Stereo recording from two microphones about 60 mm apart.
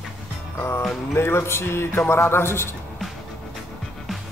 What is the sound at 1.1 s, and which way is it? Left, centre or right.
Speech, left.